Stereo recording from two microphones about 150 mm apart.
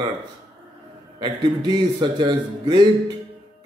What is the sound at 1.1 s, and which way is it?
Speech, 30° right (ahead or behind).